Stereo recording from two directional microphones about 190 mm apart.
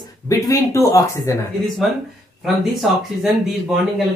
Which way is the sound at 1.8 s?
Centre (ahead or behind).